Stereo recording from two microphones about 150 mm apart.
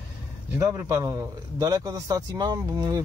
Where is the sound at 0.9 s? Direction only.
20° right (ahead or behind).